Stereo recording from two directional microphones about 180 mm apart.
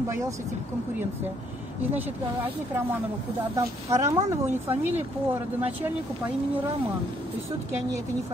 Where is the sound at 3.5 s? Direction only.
20° right (ahead or behind).